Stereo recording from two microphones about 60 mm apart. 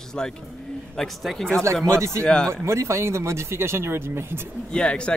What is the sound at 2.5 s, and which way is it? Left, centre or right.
Speech, right.